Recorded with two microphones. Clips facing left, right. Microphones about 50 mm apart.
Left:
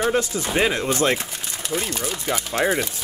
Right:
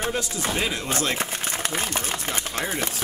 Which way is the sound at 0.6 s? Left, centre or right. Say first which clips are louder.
Left 9 dB; left.